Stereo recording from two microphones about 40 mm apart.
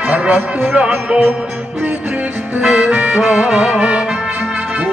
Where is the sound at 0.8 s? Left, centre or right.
Right.